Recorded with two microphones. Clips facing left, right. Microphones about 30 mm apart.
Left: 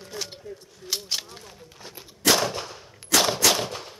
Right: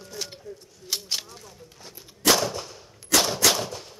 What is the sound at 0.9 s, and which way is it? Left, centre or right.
Speech, centre.